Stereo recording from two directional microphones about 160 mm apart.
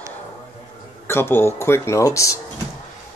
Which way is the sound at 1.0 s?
15° left (ahead or behind).